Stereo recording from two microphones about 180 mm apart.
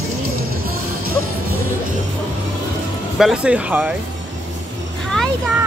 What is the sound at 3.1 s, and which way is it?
Speech, 5° right (ahead or behind).